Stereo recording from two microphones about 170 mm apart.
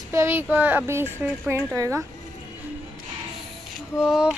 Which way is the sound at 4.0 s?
5° right (ahead or behind).